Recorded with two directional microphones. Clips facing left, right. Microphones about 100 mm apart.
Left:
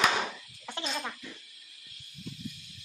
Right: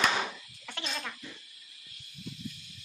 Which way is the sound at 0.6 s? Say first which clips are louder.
Left 3 dB; 20° left (ahead or behind).